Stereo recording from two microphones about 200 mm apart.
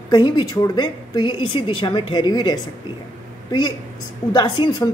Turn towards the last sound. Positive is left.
turn(degrees=20)  # may be behind; listen again after turning